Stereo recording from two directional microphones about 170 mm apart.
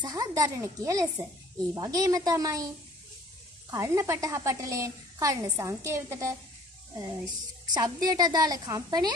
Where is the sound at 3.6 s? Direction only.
15° right (ahead or behind).